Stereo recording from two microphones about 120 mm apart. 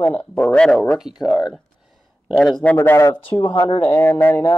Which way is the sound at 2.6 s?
20° left (ahead or behind).